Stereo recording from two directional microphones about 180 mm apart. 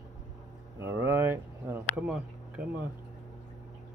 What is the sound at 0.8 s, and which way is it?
Speech, 10° right (ahead or behind).